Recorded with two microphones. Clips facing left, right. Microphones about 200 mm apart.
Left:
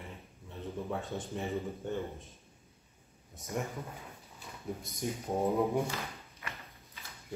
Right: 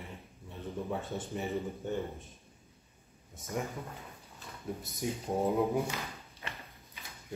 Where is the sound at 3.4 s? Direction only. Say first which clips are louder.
Even; centre (ahead or behind).